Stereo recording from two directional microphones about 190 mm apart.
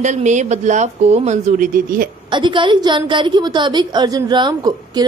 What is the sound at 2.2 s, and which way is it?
A woman's voice, 25° right (ahead or behind).